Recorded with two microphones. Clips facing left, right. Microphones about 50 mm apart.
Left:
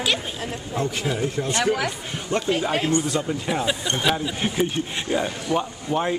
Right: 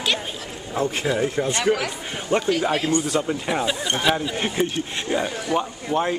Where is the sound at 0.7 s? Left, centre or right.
Centre.